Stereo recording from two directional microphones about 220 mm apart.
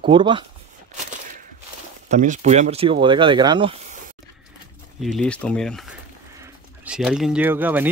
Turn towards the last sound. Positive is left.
turn(degrees=-10)  # may be behind; listen again after turning